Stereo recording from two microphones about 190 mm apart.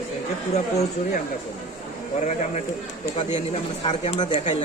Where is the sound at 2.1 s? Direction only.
40° left (ahead or behind).